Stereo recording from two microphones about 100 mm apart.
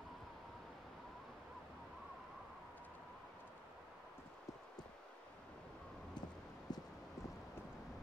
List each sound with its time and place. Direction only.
6.7 s clip-clop: 40° left (ahead or behind)